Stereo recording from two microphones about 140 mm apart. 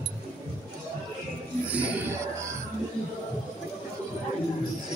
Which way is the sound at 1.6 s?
10° right (ahead or behind).